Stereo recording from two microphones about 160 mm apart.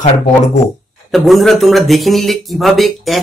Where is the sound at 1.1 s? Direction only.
Centre (ahead or behind).